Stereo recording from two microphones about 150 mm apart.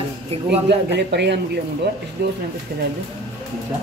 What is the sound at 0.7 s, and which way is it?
Speech, 90° right.